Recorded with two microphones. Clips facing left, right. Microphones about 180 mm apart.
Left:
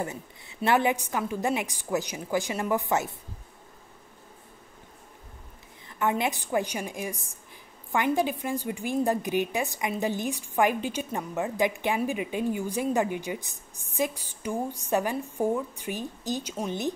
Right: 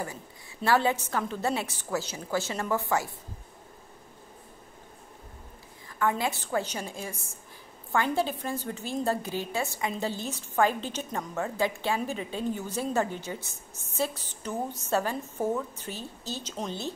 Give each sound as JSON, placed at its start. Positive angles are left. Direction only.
{"t": 0.0, "sound": "a woman's voice", "side_deg": 20}
{"t": 5.9, "sound": "a woman's voice", "side_deg": 20}